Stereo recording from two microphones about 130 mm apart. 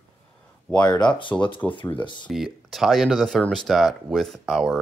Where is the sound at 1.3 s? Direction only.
15° left (ahead or behind).